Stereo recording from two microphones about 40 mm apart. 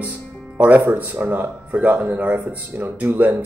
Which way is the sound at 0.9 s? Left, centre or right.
Right.